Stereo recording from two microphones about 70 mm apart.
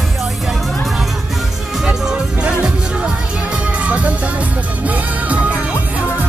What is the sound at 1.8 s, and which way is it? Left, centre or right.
Music, centre.